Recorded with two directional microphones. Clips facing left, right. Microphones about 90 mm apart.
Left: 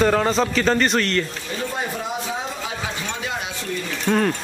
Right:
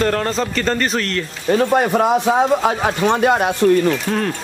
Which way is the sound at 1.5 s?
60° right (ahead or behind).